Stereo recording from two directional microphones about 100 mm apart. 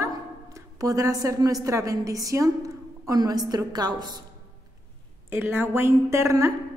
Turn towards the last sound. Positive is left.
turn(degrees=-30)  # may be behind; listen again after turning